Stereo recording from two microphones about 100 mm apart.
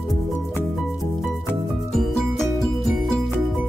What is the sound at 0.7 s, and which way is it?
Music, centre (ahead or behind).